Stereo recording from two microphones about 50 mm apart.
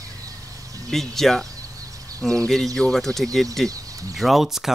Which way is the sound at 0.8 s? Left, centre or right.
Centre.